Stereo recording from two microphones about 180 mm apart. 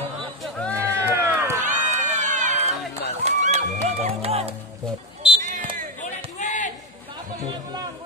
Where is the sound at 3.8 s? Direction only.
35° right (ahead or behind).